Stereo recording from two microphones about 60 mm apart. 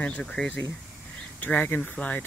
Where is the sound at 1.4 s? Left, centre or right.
Left.